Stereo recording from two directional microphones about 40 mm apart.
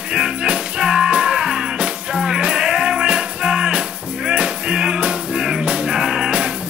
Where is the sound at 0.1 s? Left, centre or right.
Right.